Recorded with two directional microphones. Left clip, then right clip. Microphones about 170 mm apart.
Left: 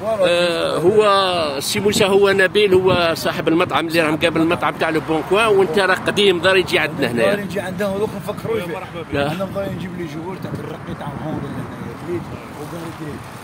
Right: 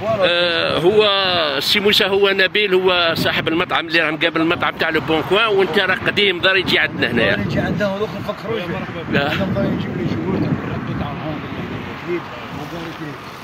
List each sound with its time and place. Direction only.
0.2 s speech: 5° left (ahead or behind)
7.5 s speech: 40° left (ahead or behind)
9.1 s speech: centre (ahead or behind)